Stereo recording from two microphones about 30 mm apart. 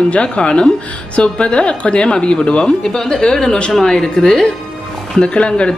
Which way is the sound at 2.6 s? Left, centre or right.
Left.